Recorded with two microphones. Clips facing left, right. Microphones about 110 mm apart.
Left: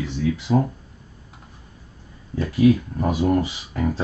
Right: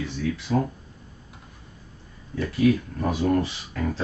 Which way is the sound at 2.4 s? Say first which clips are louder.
Left 4 dB; 20° left (ahead or behind).